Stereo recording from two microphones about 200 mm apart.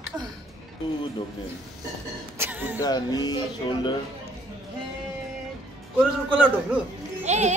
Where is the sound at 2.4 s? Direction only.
10° right (ahead or behind).